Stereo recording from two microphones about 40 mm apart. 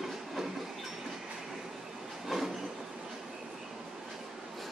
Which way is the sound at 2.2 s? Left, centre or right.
Centre.